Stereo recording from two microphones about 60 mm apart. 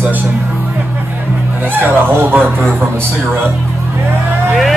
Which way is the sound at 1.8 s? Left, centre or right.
Right.